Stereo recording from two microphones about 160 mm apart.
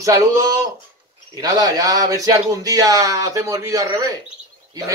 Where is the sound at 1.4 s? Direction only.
25° right (ahead or behind).